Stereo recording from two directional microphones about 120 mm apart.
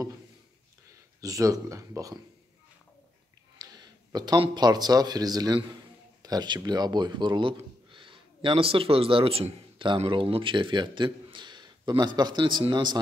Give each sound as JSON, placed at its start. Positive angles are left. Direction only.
{"t": 1.2, "sound": "speech", "side_deg": -30}
{"t": 3.5, "sound": "a man's voice", "side_deg": -35}